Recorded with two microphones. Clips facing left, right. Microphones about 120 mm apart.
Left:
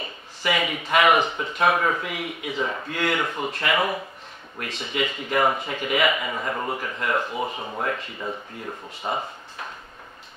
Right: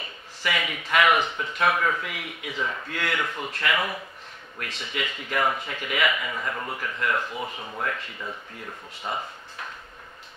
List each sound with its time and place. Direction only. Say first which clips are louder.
0.4 s speech: left 4 dB; 20° left (ahead or behind)